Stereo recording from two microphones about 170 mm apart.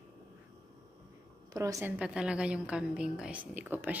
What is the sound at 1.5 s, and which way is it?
A woman's voice, 20° right (ahead or behind).